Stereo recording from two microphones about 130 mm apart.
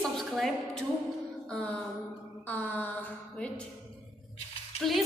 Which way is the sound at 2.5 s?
15° left (ahead or behind).